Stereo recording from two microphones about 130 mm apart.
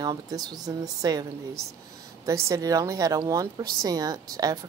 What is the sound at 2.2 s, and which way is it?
Speech, 25° right (ahead or behind).